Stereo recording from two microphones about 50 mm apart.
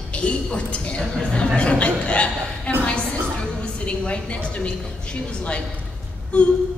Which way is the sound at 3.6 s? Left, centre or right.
Left.